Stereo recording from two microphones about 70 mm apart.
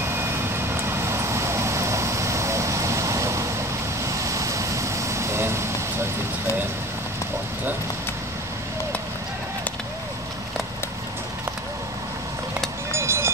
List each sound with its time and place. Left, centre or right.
0.0 s vehicle: right
12.9 s vehicle: right